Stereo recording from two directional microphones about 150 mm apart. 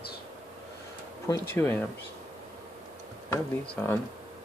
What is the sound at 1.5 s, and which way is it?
Speech, 15° left (ahead or behind).